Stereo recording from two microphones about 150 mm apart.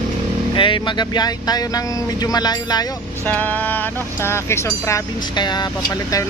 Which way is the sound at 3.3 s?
10° left (ahead or behind).